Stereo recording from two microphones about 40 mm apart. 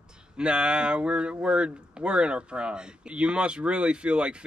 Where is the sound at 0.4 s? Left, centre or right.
Right.